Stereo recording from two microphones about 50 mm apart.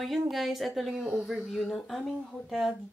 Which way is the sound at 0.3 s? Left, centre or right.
Centre.